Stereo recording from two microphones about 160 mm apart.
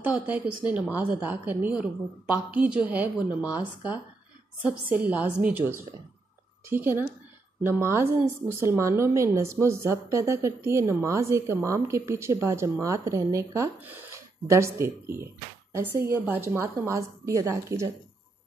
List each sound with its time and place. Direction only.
0.0 s a woman's voice: 10° right (ahead or behind)